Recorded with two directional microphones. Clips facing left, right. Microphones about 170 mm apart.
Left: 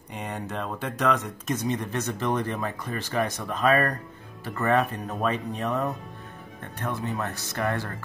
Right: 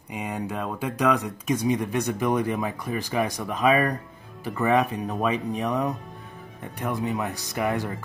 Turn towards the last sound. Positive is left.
turn(degrees=-10)  # may be behind; listen again after turning